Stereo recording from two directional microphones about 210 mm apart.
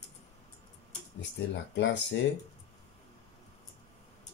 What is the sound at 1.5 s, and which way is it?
Speech, 60° left (ahead or behind).